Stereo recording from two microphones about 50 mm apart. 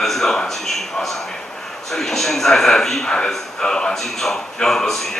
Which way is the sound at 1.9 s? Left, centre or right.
Centre.